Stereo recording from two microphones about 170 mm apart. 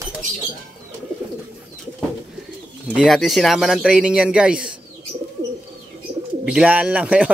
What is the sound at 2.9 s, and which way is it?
Speech, centre (ahead or behind).